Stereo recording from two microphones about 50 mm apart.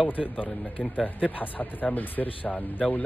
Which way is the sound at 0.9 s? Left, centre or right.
Left.